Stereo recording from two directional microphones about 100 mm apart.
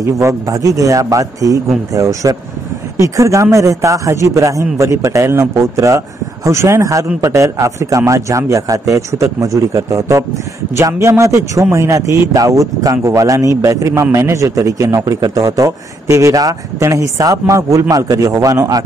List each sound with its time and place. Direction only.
0.0 s a man's voice: 30° right (ahead or behind)